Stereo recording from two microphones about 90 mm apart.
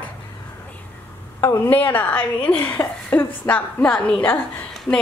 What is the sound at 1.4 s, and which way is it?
A woman's voice, 25° left (ahead or behind).